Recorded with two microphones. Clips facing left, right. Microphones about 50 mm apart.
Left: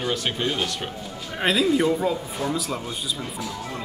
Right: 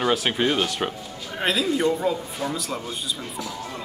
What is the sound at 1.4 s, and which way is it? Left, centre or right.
A man's voice, centre.